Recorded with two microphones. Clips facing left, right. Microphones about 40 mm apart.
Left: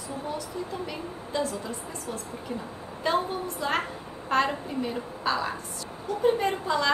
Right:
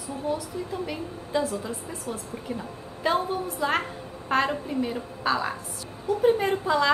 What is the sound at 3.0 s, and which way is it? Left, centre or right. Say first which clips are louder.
A woman's voice: right 2 dB; centre.